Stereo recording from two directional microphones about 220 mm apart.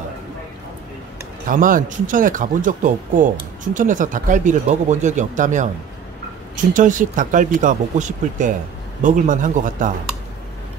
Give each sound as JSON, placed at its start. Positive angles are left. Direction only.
{"t": 1.5, "sound": "speech", "side_deg": -40}